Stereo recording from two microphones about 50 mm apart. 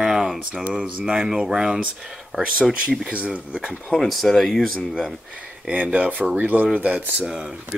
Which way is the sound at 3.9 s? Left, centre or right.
Centre.